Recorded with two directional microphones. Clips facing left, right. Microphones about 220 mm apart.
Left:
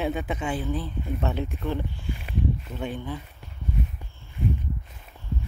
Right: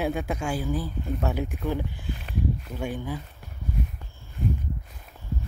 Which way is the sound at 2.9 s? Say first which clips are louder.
Right 1 dB; 10° right (ahead or behind).